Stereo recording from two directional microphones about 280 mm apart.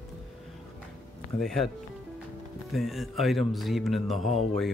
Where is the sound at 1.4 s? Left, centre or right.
Centre.